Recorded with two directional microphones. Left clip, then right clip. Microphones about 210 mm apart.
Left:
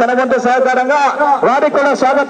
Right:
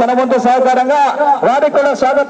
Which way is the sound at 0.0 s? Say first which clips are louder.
Right 1 dB; 45° right (ahead or behind).